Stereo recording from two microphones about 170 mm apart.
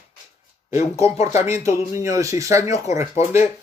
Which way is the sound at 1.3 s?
15° right (ahead or behind).